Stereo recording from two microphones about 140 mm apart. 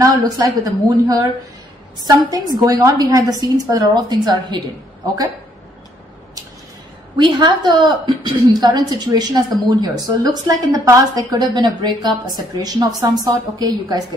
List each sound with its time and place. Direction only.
0.7 s a woman's voice: 25° right (ahead or behind)
7.2 s a woman's voice: 35° right (ahead or behind)